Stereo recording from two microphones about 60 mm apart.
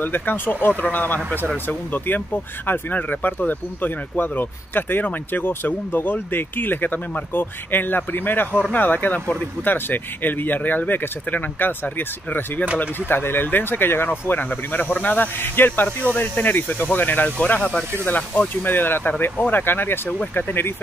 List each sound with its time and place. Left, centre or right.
0.0 s speech: left